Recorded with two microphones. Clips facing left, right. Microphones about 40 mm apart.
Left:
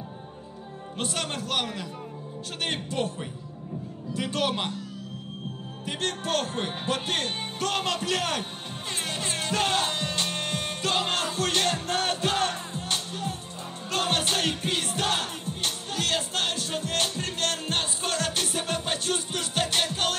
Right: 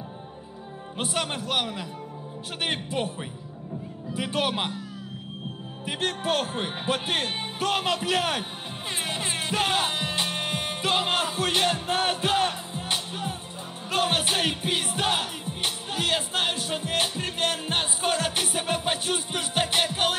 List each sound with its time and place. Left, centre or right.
0.9 s speech: centre
5.9 s speech: centre
9.0 s music: centre